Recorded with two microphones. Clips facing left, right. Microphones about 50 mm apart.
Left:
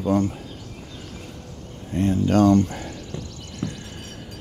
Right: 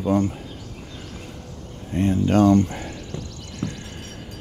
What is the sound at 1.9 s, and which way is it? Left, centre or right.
Speech, right.